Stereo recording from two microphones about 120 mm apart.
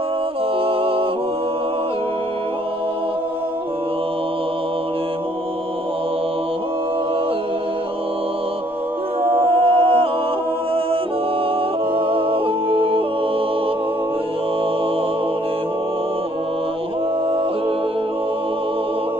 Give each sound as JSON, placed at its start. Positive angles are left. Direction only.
{"t": 0.7, "sound": "music", "side_deg": -50}
{"t": 9.4, "sound": "a capella", "side_deg": -50}
{"t": 11.9, "sound": "music", "side_deg": -50}